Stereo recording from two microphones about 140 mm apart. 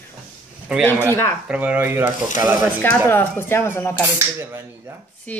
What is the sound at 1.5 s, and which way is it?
Speech, 10° right (ahead or behind).